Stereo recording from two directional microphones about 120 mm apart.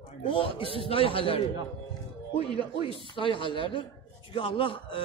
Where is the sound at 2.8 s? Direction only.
45° left (ahead or behind).